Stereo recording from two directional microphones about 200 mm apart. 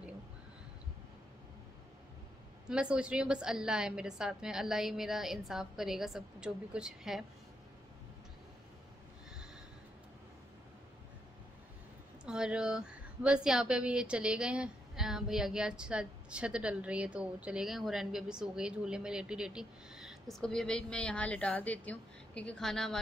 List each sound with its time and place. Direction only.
2.7 s speech: 5° right (ahead or behind)
12.3 s speech: 5° right (ahead or behind)